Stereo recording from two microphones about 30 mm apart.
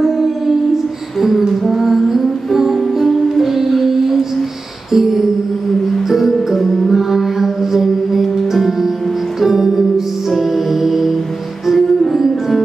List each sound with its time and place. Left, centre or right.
0.0 s music: centre
12.2 s music: centre